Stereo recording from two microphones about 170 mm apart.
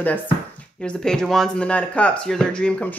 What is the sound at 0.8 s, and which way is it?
Speech, 5° left (ahead or behind).